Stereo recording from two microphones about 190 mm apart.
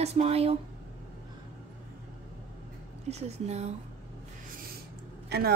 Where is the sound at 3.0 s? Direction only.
35° right (ahead or behind).